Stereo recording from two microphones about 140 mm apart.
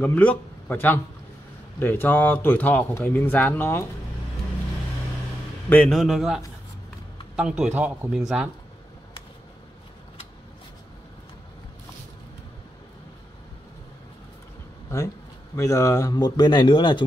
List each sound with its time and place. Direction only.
0.0 s a man's voice: 10° left (ahead or behind)
5.7 s a man's voice: 5° left (ahead or behind); by 8.1 s 10° right (ahead or behind)
15.5 s a man's voice: 20° left (ahead or behind)